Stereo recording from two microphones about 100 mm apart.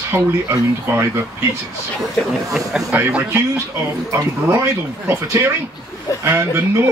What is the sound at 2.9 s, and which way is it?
Speech, 15° right (ahead or behind).